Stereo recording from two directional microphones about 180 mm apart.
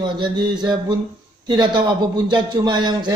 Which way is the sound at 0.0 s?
25° right (ahead or behind).